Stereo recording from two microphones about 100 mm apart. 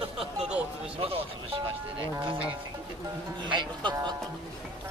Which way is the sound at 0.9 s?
75° right (ahead or behind).